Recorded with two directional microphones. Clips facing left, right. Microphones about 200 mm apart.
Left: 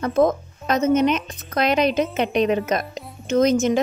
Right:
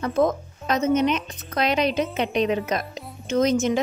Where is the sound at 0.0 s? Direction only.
50° left (ahead or behind).